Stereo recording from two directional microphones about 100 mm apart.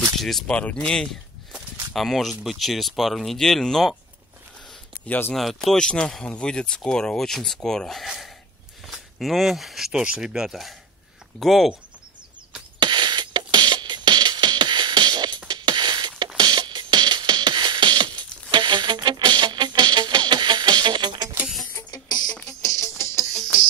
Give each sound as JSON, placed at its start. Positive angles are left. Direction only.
{"t": 0.2, "sound": "speech", "side_deg": 5}
{"t": 5.0, "sound": "speech", "side_deg": 15}
{"t": 5.3, "sound": "speech", "side_deg": 0}
{"t": 12.7, "sound": "music", "side_deg": -45}
{"t": 22.3, "sound": "music", "side_deg": 10}
{"t": 22.8, "sound": "music", "side_deg": 30}